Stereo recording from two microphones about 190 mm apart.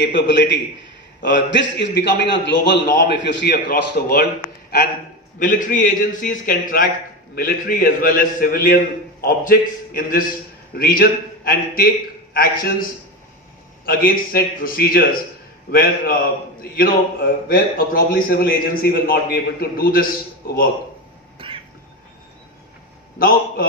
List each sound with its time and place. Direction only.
0.0 s a man's voice: 70° left (ahead or behind)
5.4 s a man's voice: 45° left (ahead or behind)
13.8 s a man's voice: 50° left (ahead or behind)
21.4 s a sound: 30° right (ahead or behind)
23.1 s a man's voice: 50° left (ahead or behind)